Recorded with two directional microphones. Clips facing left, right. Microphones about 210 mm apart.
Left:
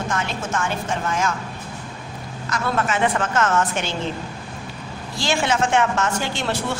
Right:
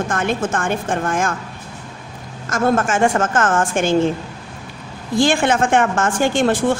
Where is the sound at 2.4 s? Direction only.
45° right (ahead or behind).